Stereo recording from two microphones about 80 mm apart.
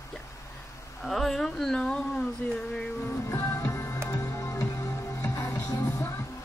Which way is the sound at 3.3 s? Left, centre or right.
Left.